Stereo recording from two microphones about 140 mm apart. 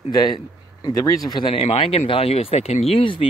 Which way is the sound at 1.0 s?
25° left (ahead or behind).